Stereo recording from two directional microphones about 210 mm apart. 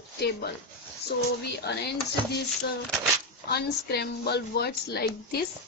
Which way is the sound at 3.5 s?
50° left (ahead or behind).